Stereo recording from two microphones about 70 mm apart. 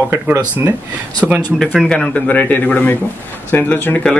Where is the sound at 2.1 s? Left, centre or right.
Left.